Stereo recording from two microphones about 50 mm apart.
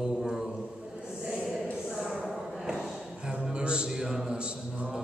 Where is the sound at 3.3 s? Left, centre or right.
Centre.